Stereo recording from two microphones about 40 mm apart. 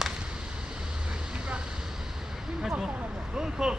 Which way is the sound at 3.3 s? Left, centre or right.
Centre.